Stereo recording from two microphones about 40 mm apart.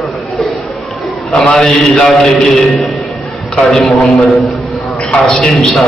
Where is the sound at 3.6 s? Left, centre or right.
Centre.